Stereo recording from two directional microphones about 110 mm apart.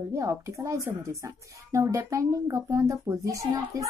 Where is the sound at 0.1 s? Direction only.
30° right (ahead or behind).